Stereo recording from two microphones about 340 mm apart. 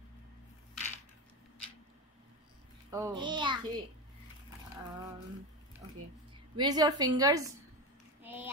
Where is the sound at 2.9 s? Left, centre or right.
Centre.